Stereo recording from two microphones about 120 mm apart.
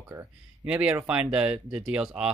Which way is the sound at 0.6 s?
10° right (ahead or behind).